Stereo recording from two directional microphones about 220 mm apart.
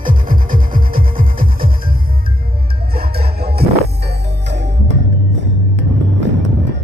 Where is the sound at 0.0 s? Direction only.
40° right (ahead or behind).